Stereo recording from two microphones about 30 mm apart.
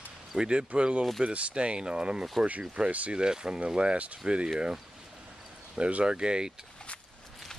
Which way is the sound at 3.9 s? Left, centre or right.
Right.